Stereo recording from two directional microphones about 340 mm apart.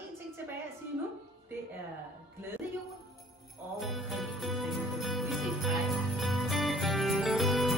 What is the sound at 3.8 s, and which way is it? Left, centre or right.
Jingle bell, centre.